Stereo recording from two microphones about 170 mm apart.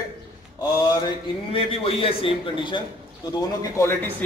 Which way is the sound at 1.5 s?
35° left (ahead or behind).